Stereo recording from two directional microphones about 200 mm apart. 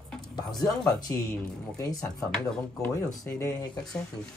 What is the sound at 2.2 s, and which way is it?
Speech, 5° left (ahead or behind).